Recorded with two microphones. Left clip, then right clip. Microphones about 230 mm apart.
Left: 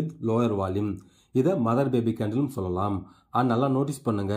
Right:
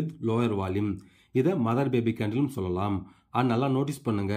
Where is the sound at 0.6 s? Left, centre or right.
Right.